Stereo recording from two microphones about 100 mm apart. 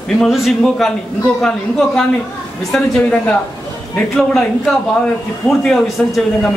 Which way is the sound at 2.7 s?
10° left (ahead or behind).